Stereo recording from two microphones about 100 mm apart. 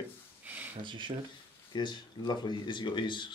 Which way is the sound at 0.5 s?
15° right (ahead or behind).